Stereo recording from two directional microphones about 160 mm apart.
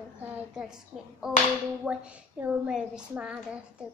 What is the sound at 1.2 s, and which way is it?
Speech, 5° right (ahead or behind).